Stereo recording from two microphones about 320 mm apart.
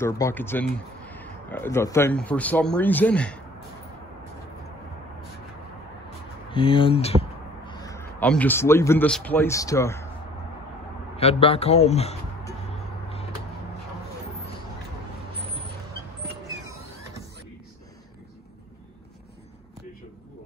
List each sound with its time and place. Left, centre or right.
0.0 s speech: centre
6.5 s speech: centre
11.1 s speech: centre
16.4 s a sound: centre